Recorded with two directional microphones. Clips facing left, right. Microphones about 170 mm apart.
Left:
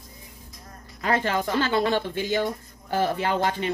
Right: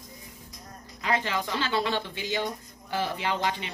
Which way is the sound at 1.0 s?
50° left (ahead or behind).